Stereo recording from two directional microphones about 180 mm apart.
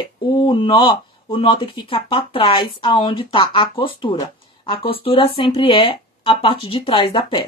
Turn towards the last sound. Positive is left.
turn(degrees=30)  # may be behind; listen again after turning